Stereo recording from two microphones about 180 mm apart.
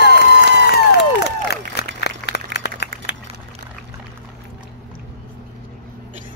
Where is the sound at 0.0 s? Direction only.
60° left (ahead or behind).